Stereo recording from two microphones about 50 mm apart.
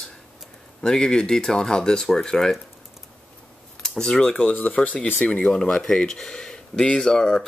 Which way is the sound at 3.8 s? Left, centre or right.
Centre.